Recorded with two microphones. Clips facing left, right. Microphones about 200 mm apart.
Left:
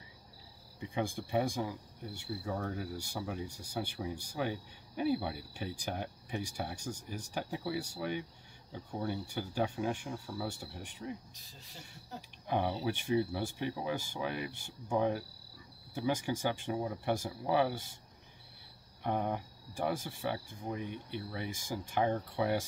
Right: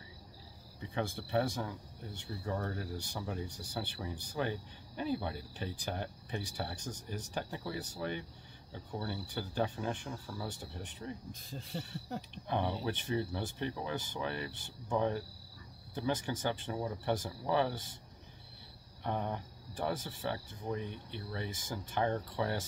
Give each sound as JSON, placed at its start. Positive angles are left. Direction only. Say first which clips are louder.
{"t": 0.7, "sound": "speech", "louder": "left 2 dB", "side_deg": 15}
{"t": 11.3, "sound": "speech", "louder": "right 11 dB", "side_deg": -55}
{"t": 12.4, "sound": "speech", "louder": "left 2 dB", "side_deg": 10}
{"t": 19.0, "sound": "speech", "louder": "left 3 dB", "side_deg": 10}